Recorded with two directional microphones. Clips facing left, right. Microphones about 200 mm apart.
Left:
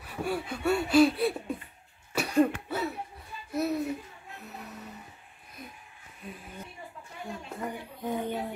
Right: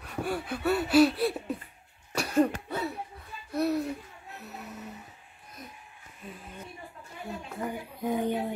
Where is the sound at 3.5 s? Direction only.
Centre (ahead or behind).